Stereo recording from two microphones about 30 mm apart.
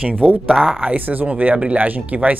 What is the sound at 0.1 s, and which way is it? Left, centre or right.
Speech, right.